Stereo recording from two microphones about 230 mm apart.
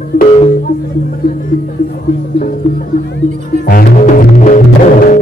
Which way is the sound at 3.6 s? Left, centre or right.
Left.